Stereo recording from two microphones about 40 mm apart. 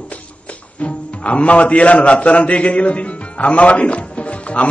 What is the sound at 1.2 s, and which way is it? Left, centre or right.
A man's voice, left.